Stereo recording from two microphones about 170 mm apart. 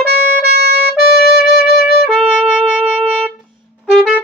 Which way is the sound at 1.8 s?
Centre (ahead or behind).